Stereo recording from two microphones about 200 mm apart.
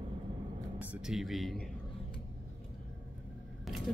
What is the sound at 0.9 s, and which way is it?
Speech, centre (ahead or behind).